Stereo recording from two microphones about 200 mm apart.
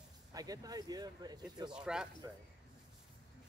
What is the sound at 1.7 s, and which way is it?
Speech, 5° right (ahead or behind).